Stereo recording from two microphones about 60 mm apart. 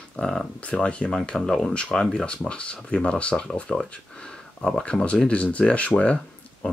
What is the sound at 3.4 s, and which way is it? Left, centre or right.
Speech, centre.